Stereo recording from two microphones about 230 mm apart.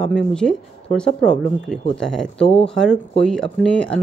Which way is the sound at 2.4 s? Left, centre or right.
Left.